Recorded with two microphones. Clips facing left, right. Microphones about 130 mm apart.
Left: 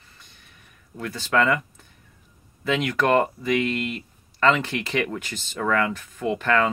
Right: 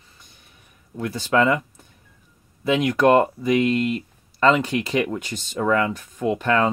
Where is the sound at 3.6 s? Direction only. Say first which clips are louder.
Right 6 dB; 35° right (ahead or behind).